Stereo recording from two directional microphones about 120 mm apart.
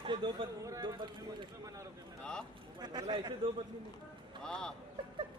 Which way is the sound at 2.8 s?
35° right (ahead or behind).